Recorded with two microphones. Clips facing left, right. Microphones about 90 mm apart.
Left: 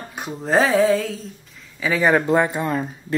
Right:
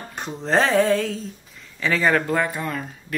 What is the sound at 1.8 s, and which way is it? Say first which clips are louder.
Speech: left 2 dB; 15° left (ahead or behind).